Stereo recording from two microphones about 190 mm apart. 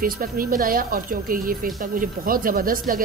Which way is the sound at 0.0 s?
50° right (ahead or behind).